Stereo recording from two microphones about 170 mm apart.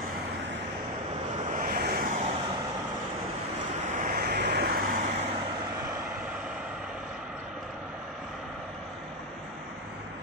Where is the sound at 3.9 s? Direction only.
55° right (ahead or behind).